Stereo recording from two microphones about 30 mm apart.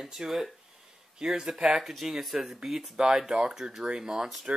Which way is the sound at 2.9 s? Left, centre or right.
Right.